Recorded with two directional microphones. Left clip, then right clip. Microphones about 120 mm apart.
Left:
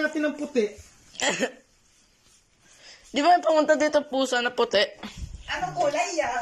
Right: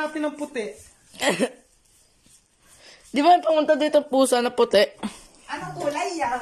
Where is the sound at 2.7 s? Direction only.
40° right (ahead or behind).